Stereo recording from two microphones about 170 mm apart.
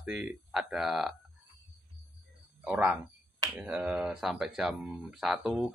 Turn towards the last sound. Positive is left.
turn(degrees=0)  # may be behind; listen again after turning